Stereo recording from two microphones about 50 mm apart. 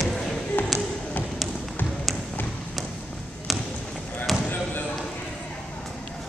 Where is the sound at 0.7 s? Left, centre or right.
Centre.